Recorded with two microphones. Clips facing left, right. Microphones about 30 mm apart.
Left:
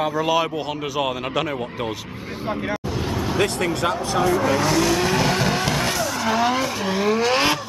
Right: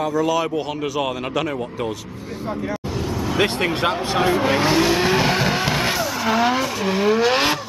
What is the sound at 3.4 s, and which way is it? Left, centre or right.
Speech, right.